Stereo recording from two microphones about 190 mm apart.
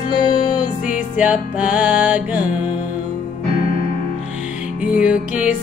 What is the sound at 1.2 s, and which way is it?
Music, 5° right (ahead or behind).